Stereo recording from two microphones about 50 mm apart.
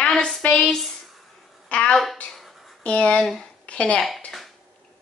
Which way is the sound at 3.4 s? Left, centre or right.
Left.